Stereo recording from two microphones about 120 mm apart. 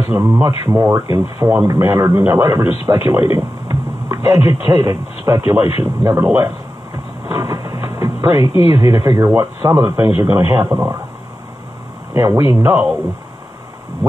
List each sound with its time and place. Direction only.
0.2 s speech: 25° right (ahead or behind)
7.2 s television: 25° right (ahead or behind)
8.6 s speech: 25° right (ahead or behind)
12.1 s speech: 20° right (ahead or behind)